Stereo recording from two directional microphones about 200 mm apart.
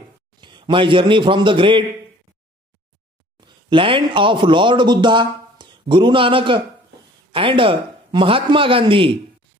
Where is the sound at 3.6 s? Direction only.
25° right (ahead or behind).